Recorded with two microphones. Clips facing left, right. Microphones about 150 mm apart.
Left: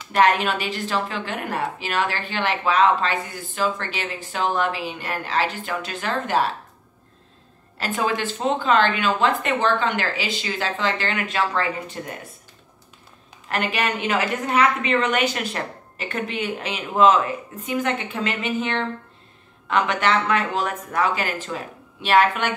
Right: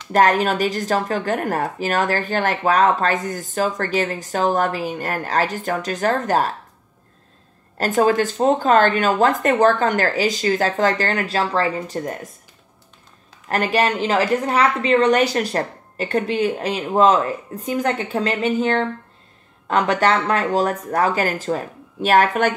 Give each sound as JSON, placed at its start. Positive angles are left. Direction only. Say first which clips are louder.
{"t": 0.1, "sound": "a woman's voice", "louder": "right 3 dB", "side_deg": -40}
{"t": 7.7, "sound": "a woman's voice", "louder": "right 7 dB", "side_deg": -45}
{"t": 13.5, "sound": "a woman's voice", "louder": "right 5 dB", "side_deg": -35}